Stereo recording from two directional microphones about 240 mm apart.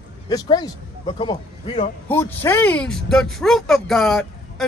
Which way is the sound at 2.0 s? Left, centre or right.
Centre.